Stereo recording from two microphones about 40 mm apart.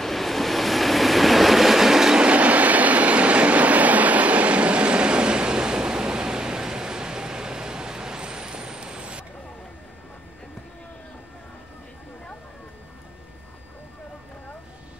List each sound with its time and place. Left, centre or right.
0.0 s train: centre
2.1 s train: right